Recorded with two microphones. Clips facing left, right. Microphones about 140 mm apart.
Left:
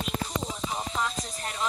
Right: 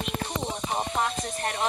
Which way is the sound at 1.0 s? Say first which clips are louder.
Right 4 dB; 60° right (ahead or behind).